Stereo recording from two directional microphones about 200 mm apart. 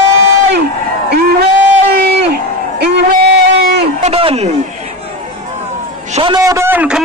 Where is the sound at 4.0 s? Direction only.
30° right (ahead or behind).